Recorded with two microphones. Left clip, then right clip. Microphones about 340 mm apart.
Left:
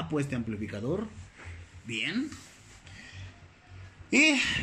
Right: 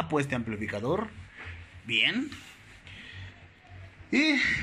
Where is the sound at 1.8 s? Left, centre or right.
Centre.